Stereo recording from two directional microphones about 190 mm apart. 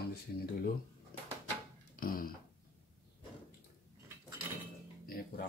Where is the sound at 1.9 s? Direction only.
50° left (ahead or behind).